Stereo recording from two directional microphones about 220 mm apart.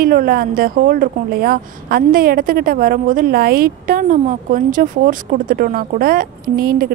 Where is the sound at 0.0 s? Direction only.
40° right (ahead or behind).